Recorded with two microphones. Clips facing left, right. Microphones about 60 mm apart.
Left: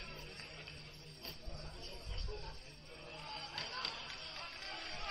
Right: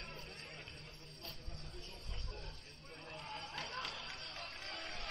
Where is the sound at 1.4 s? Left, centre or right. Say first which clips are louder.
Left 1 dB; centre.